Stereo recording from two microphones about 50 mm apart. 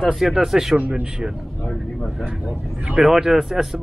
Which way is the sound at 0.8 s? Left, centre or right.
Right.